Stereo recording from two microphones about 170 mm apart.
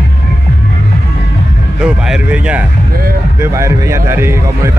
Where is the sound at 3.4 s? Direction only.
15° right (ahead or behind).